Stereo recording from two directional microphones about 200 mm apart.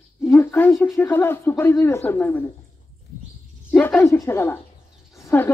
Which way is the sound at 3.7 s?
5° left (ahead or behind).